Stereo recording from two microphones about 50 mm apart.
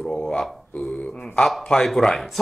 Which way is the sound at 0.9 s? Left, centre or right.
Left.